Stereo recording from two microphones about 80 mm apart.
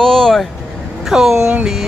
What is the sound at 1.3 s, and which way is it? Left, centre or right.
Speech, right.